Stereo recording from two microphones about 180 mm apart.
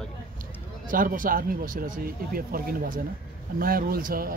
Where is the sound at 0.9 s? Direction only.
50° right (ahead or behind).